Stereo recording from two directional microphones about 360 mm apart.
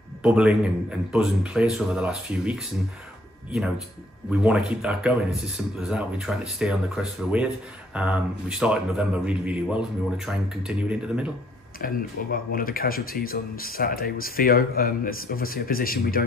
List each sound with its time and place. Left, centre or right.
0.2 s speech: centre
3.5 s speech: centre
11.8 s speech: left